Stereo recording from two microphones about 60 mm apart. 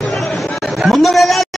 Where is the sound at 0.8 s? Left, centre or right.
Centre.